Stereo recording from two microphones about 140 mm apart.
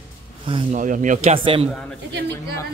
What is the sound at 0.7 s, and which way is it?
Speech, 70° right (ahead or behind).